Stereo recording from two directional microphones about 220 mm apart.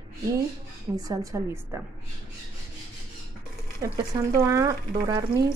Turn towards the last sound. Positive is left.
turn(degrees=-15)  # may be behind; listen again after turning